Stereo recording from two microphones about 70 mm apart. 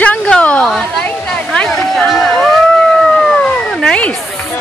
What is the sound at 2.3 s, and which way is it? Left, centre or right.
Music, centre.